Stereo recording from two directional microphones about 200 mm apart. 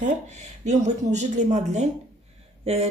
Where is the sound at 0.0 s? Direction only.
35° right (ahead or behind).